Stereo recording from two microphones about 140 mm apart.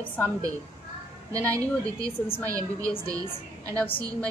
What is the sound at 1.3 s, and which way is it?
A woman's voice, 25° right (ahead or behind).